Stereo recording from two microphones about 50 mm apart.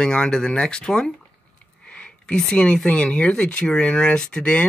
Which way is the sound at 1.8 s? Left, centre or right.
Centre.